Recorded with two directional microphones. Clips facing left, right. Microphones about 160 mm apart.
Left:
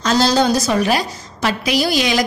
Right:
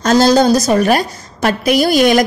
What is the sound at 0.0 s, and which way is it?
A woman's voice, 45° right (ahead or behind).